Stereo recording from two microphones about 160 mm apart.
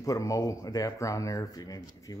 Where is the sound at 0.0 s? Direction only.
20° left (ahead or behind).